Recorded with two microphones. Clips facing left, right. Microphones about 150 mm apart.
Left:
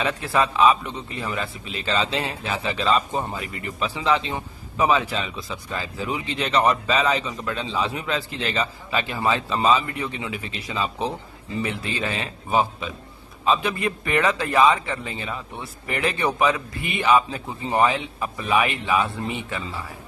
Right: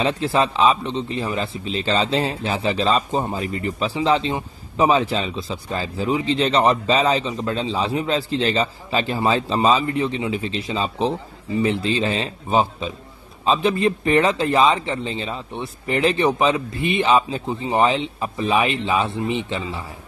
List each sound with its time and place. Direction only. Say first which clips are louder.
0.0 s speech: right 3 dB; 25° right (ahead or behind)